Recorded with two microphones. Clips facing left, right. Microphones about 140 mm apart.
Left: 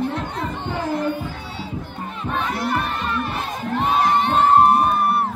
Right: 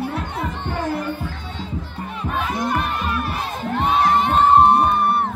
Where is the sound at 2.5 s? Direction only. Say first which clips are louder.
Right 1 dB; 15° right (ahead or behind).